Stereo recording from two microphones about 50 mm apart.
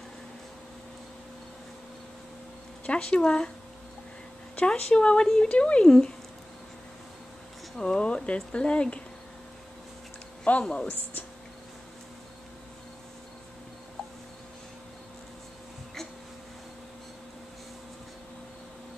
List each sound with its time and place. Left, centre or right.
2.9 s speech: left
4.6 s speech: left
7.7 s speech: centre
10.6 s speech: centre